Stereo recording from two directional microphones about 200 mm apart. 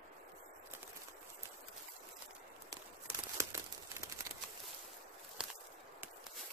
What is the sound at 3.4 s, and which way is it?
Crumpling, 15° right (ahead or behind).